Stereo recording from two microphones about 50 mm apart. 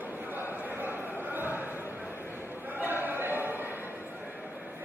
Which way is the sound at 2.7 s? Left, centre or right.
Right.